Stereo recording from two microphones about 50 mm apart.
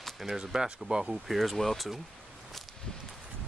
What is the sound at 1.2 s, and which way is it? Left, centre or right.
Speech, centre.